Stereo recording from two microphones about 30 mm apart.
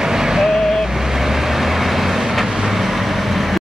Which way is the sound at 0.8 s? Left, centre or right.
Centre.